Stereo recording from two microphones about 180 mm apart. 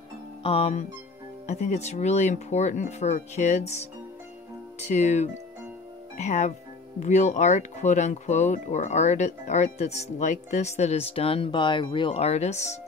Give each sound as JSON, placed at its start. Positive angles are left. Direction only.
{"t": 0.4, "sound": "speech", "side_deg": 30}